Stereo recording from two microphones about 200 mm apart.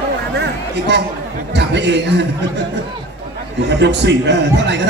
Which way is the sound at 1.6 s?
60° right (ahead or behind).